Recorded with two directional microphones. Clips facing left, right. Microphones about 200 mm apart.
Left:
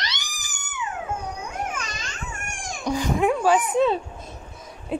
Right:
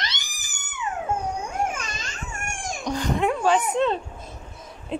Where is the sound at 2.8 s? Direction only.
5° left (ahead or behind).